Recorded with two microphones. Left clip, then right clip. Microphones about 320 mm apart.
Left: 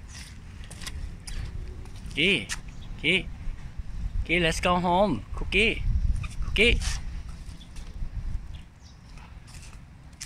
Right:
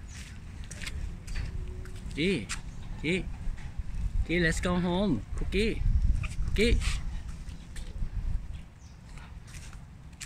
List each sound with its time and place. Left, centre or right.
0.9 s vehicle: centre
2.1 s speech: centre
4.3 s speech: centre
6.2 s fowl: centre